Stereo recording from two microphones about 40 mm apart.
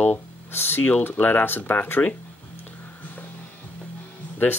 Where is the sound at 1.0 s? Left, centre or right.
Left.